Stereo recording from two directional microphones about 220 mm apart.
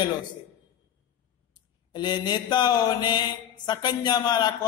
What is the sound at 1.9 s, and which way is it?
Mantra, 20° left (ahead or behind).